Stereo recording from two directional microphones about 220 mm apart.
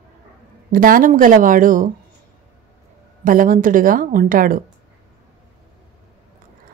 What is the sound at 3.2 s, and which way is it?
A woman's voice, 40° right (ahead or behind).